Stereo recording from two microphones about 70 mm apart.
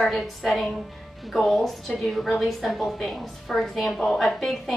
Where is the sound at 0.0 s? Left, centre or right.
Centre.